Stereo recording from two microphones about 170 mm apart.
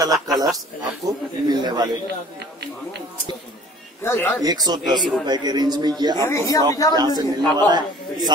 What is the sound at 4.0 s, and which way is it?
Speech, 15° left (ahead or behind).